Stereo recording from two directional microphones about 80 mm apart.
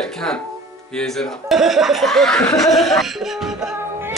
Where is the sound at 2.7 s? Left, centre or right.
Centre.